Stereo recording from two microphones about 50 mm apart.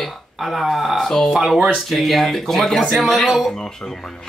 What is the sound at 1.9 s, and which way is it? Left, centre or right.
A man's voice, centre.